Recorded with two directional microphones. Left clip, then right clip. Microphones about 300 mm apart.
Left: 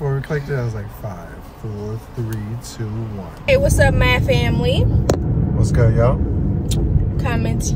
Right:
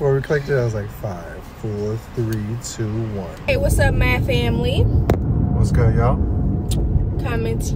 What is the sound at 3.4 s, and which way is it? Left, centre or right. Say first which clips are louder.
Speech: left 5 dB; centre.